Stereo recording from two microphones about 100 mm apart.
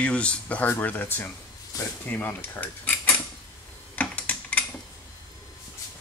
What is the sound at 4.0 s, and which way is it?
Typing, 15° left (ahead or behind).